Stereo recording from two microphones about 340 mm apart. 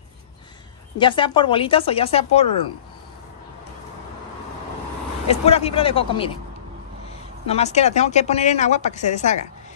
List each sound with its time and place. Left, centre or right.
0.9 s speech: centre
5.3 s a woman's voice: centre